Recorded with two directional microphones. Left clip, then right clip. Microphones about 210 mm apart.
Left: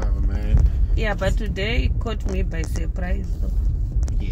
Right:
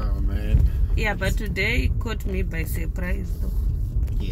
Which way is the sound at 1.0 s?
30° right (ahead or behind).